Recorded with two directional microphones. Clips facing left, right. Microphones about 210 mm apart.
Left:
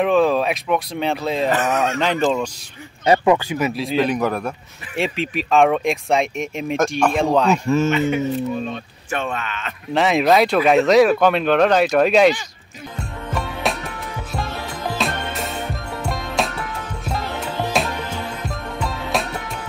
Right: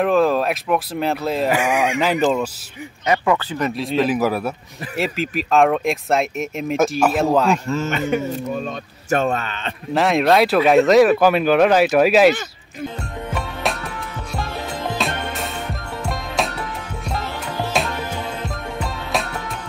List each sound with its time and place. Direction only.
0.0 s speech: centre (ahead or behind)
3.3 s speech: 15° left (ahead or behind); by 7.5 s 5° right (ahead or behind)
7.5 s a man's voice: 15° left (ahead or behind)
7.9 s speech: 45° right (ahead or behind)
9.9 s speech: centre (ahead or behind)
13.3 s music: centre (ahead or behind)
15.0 s music: centre (ahead or behind)
17.8 s music: centre (ahead or behind)